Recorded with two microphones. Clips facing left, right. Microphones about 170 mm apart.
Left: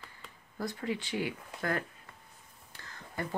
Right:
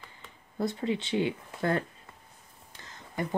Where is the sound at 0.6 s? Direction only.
25° right (ahead or behind).